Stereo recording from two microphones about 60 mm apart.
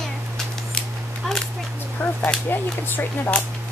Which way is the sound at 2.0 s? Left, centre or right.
Left.